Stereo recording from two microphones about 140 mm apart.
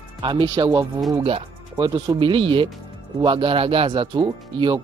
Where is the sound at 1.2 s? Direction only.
40° right (ahead or behind).